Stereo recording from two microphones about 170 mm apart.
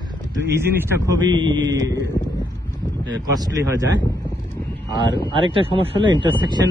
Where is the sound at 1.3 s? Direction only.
25° right (ahead or behind).